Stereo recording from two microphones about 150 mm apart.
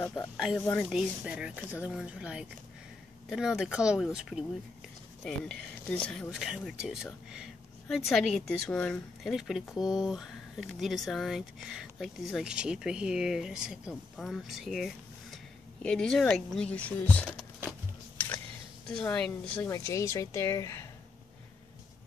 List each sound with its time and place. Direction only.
0.2 s a woman's voice: 5° left (ahead or behind)
0.8 s a woman's voice: 5° right (ahead or behind)
18.9 s a woman's voice: 5° left (ahead or behind)
19.7 s speech: 20° left (ahead or behind)